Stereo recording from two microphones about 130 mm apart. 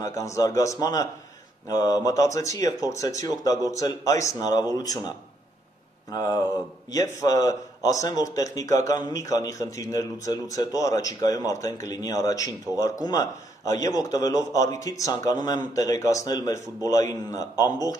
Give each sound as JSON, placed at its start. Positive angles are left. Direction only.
{"t": 0.0, "sound": "speech", "side_deg": 25}
{"t": 6.1, "sound": "speech", "side_deg": 30}